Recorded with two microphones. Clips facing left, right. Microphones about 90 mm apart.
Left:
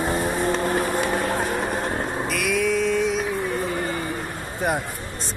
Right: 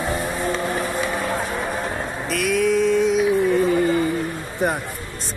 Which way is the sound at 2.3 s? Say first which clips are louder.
Right 5 dB; centre (ahead or behind).